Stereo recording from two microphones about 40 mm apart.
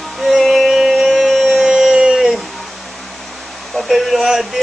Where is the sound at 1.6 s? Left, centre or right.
Centre.